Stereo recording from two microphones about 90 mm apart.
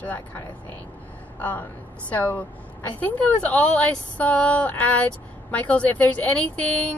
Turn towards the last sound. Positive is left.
turn(degrees=15)  # may be behind; listen again after turning